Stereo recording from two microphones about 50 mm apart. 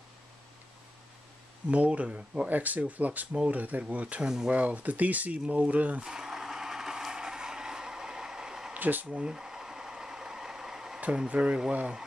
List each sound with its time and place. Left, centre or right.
1.7 s speech: right
4.2 s speech: centre
4.6 s speech: right
6.0 s vehicle: centre
8.7 s a sound: right
9.0 s a sound: centre
11.2 s speech: right